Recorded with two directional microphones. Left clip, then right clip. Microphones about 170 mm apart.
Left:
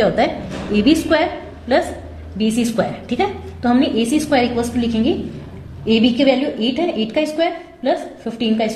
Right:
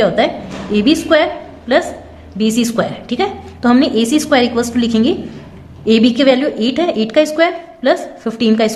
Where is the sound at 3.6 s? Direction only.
30° right (ahead or behind).